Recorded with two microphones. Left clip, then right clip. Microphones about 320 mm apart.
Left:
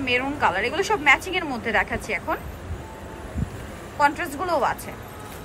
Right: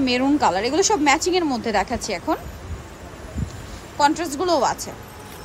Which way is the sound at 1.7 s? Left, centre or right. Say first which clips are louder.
Left 2 dB; centre.